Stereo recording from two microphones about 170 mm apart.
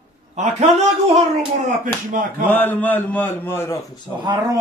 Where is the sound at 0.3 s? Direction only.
45° right (ahead or behind).